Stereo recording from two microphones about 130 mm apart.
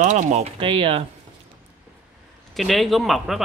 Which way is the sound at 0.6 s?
40° right (ahead or behind).